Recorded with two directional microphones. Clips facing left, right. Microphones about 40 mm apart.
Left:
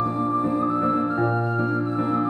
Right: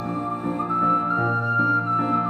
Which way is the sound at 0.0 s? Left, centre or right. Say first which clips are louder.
Left 4 dB; right.